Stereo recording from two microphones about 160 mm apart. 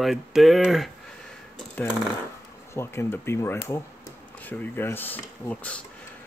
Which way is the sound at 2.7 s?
15° left (ahead or behind).